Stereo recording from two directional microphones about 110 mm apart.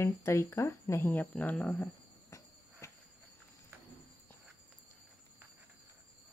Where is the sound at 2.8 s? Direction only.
25° left (ahead or behind).